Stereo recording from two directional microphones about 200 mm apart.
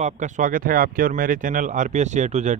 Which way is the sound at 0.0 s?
40° right (ahead or behind).